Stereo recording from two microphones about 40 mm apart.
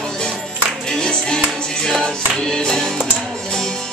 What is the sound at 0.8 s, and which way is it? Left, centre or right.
Music, centre.